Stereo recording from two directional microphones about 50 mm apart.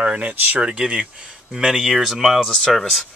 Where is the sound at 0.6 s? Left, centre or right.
Centre.